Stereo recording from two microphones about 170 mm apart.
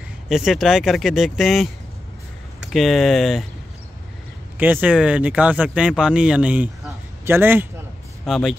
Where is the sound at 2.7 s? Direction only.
Centre (ahead or behind).